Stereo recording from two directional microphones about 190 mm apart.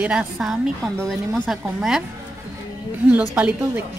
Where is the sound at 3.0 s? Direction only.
5° right (ahead or behind).